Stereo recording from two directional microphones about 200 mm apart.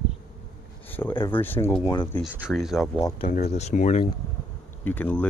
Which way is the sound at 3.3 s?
35° left (ahead or behind).